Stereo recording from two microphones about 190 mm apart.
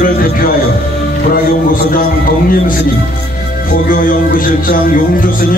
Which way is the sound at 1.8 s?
50° left (ahead or behind).